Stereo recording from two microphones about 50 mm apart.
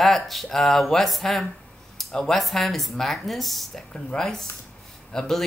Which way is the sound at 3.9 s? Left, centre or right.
Centre.